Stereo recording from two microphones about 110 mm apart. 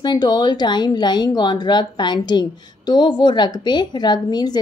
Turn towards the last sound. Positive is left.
turn(degrees=40)  # may be behind; listen again after turning